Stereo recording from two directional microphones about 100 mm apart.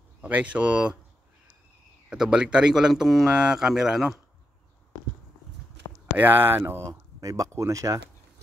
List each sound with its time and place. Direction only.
0.2 s speech: 15° right (ahead or behind)
2.0 s speech: 10° right (ahead or behind)
6.1 s speech: 20° right (ahead or behind)